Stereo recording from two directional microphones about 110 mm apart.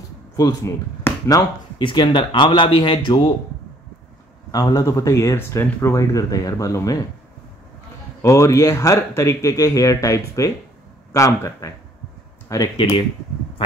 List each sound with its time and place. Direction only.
0.4 s speech: 35° left (ahead or behind)
1.3 s speech: 45° left (ahead or behind)
4.5 s speech: 35° left (ahead or behind)
8.2 s speech: 25° left (ahead or behind)